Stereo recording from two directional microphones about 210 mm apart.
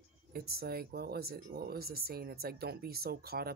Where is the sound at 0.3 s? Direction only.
45° right (ahead or behind).